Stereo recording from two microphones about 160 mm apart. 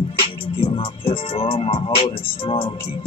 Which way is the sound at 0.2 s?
35° left (ahead or behind).